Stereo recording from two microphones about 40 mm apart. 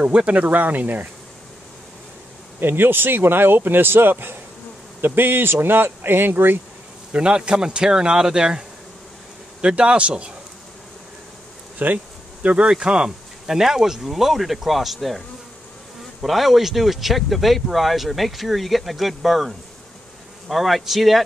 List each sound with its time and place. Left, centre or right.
0.0 s speech: right
2.6 s speech: right
7.1 s speech: right
11.8 s bee: right
12.4 s speech: right; by 21.2 s centre